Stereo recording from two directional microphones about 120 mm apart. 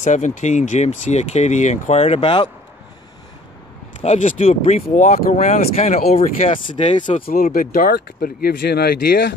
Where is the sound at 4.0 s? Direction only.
65° left (ahead or behind).